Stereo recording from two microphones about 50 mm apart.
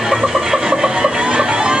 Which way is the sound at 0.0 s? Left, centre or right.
Centre.